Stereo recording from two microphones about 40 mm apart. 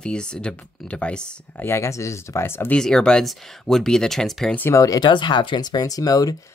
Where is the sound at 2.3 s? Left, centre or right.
Left.